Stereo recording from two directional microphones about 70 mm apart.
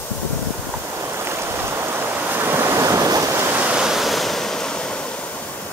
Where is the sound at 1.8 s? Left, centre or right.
Right.